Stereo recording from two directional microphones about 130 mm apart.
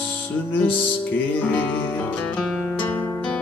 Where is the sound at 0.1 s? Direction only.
15° left (ahead or behind).